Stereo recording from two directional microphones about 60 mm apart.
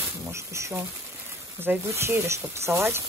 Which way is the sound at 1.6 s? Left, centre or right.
Right.